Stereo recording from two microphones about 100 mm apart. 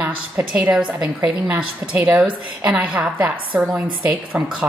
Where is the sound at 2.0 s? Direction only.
10° right (ahead or behind).